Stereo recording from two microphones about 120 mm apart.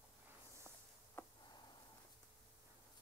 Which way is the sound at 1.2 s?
20° left (ahead or behind).